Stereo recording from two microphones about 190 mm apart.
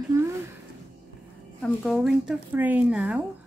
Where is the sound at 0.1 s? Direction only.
15° right (ahead or behind).